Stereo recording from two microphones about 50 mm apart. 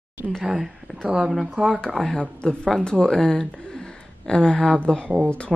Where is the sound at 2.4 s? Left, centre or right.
Centre.